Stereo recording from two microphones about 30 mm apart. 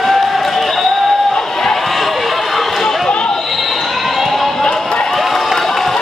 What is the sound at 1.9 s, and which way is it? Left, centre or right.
Run, centre.